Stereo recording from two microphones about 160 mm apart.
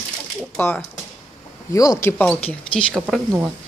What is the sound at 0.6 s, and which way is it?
Speech, 10° left (ahead or behind).